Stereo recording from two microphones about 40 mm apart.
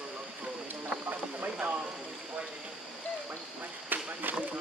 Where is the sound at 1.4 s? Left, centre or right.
Right.